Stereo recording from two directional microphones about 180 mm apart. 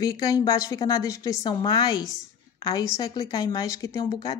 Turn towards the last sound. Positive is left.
turn(degrees=20)  # may be behind; listen again after turning